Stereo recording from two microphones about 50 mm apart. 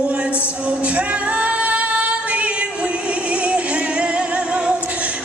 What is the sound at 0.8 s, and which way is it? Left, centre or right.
Music, right.